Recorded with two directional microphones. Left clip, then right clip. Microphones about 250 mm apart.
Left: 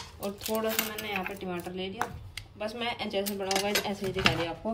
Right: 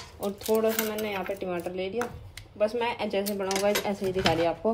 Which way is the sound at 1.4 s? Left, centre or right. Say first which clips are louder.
Right 5 dB; right.